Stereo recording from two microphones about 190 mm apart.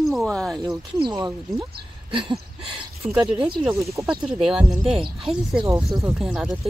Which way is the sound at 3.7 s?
15° right (ahead or behind).